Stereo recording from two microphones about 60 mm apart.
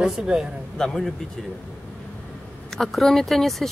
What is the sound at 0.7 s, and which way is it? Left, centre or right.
Speech, centre.